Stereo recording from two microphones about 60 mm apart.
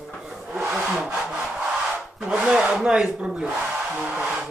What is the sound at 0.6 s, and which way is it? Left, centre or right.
Wood, centre.